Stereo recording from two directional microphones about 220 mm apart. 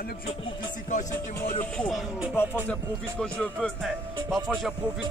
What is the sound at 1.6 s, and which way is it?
Speech, 5° left (ahead or behind).